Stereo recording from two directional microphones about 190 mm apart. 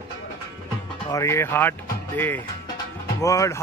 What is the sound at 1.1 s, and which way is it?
Speech, 15° left (ahead or behind).